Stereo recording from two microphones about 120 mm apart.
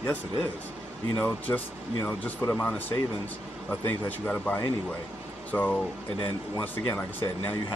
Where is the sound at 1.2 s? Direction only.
15° left (ahead or behind).